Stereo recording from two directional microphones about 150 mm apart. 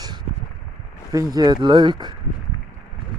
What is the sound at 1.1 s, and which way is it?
Speech, 25° right (ahead or behind).